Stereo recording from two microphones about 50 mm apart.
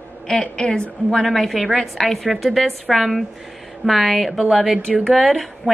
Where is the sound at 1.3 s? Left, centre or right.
Centre.